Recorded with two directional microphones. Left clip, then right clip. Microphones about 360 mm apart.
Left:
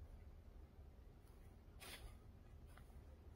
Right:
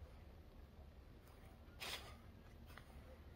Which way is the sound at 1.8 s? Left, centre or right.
Left.